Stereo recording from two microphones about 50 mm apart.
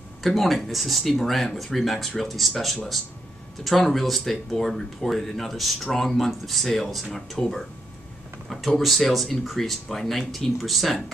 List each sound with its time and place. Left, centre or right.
0.2 s speech: centre